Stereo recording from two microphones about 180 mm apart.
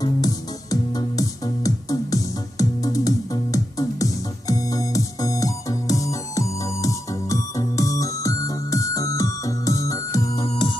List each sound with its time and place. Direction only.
0.0 s music: 20° left (ahead or behind)